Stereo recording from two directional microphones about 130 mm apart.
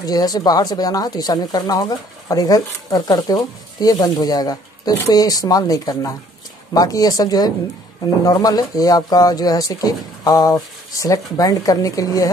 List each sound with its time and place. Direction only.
0.0 s speech: 30° left (ahead or behind)